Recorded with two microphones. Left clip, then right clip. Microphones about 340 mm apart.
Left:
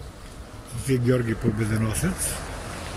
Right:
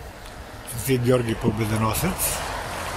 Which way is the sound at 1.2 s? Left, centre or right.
Right.